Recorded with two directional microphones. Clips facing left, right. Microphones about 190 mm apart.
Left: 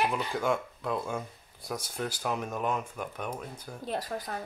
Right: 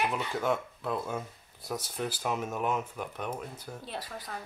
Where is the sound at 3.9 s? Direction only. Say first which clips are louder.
Left 8 dB; 45° left (ahead or behind).